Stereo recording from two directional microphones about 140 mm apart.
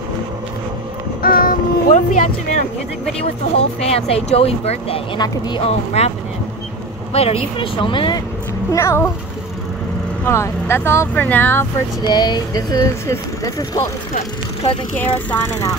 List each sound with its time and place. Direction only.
1.2 s music: 85° left
3.5 s speech: 45° left (ahead or behind)
8.7 s speech: 20° left (ahead or behind)
10.2 s speech: 20° left (ahead or behind)
12.0 s speech: 30° left (ahead or behind)
14.1 s speech: 45° left (ahead or behind)
15.0 s speech: 15° left (ahead or behind)